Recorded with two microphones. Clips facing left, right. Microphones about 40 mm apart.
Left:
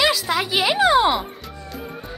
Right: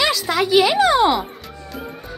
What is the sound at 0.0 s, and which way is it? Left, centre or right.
Speech, centre.